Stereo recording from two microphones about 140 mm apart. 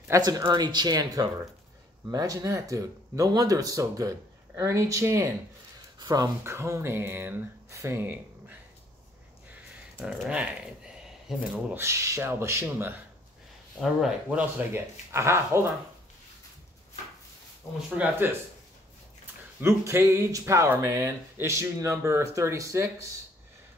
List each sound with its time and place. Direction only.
0.1 s speech: 25° right (ahead or behind)
9.9 s speech: 5° right (ahead or behind)
13.7 s speech: 5° right (ahead or behind)
14.7 s speech: 20° right (ahead or behind)
17.8 s speech: 10° right (ahead or behind)
19.6 s speech: 20° right (ahead or behind)